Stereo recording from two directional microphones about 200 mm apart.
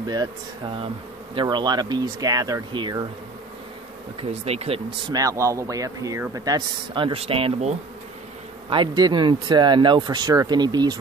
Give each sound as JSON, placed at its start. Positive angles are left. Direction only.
{"t": 0.0, "sound": "speech", "side_deg": -20}
{"t": 4.2, "sound": "speech", "side_deg": -30}